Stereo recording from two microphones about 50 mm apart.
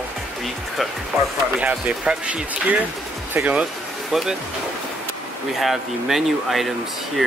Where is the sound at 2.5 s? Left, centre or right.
Right.